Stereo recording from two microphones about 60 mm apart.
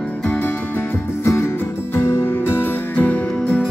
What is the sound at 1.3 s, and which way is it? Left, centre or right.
Music, left.